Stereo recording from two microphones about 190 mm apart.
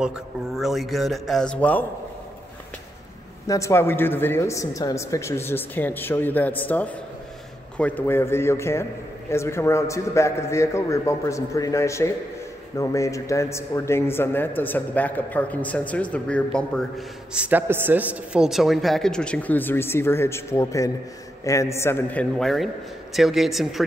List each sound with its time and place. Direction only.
0.0 s a man's voice: centre (ahead or behind)
3.4 s a man's voice: 15° left (ahead or behind)
17.3 s a man's voice: 10° right (ahead or behind)